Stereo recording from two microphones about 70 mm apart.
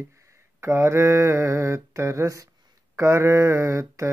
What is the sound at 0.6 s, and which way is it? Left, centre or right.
Mantra, right.